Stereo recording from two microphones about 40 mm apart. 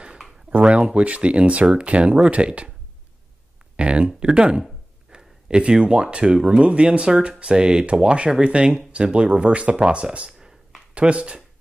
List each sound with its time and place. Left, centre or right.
0.5 s speech: right
3.7 s a sound: right
4.2 s speech: right
5.1 s a sound: right
5.6 s speech: right
9.8 s speech: right
11.0 s speech: right